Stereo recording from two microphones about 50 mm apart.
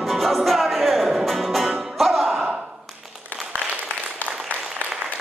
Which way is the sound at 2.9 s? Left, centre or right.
Centre.